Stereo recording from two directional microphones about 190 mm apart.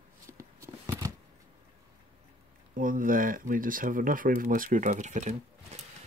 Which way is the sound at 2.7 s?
45° right (ahead or behind).